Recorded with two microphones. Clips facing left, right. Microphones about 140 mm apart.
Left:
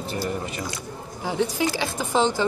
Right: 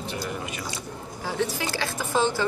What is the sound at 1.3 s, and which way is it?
Speech, 15° left (ahead or behind).